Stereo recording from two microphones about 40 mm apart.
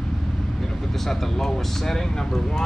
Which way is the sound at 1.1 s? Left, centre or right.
Centre.